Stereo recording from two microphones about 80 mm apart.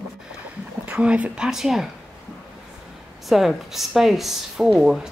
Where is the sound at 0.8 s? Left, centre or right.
Centre.